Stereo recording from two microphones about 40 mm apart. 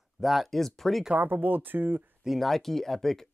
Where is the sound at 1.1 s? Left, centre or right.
Right.